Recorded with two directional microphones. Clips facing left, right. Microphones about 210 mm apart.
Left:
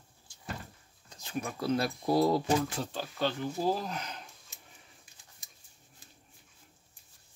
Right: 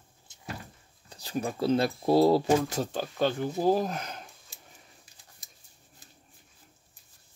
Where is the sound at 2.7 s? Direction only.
45° right (ahead or behind).